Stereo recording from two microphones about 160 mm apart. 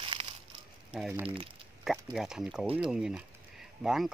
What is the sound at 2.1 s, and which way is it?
Speech, 5° right (ahead or behind).